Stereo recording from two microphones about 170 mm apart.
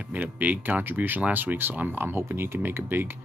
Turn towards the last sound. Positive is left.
turn(degrees=-10)  # may be behind; listen again after turning